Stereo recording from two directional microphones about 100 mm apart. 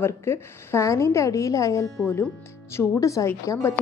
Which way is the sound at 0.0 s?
25° left (ahead or behind).